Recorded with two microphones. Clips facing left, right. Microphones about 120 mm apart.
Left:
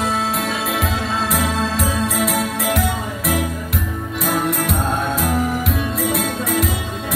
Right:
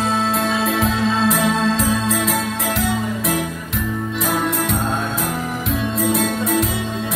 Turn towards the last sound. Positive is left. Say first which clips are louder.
# right 2 dB
turn(degrees=0)  # may be behind; listen again after turning